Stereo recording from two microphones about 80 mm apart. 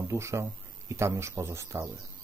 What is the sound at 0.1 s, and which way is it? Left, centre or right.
Speech, right.